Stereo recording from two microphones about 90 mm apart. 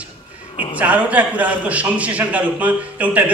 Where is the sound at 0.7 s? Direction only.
15° right (ahead or behind).